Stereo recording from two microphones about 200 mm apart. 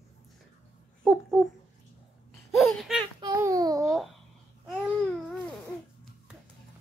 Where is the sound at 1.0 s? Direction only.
Centre (ahead or behind).